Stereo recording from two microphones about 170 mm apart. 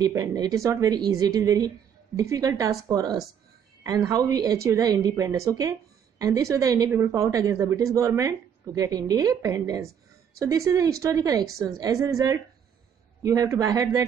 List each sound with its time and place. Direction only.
0.0 s a woman's voice: 20° right (ahead or behind)